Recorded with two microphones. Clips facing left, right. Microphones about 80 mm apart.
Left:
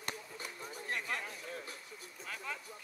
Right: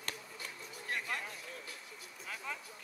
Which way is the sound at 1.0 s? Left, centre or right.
Centre.